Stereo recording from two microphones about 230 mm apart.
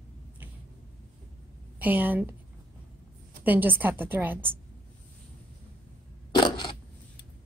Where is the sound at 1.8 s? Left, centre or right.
Centre.